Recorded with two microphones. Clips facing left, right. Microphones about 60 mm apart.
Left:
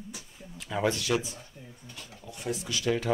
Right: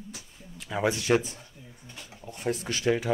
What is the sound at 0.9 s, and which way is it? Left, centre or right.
Speech, right.